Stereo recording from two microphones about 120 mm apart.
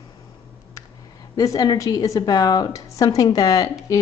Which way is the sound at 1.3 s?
30° left (ahead or behind).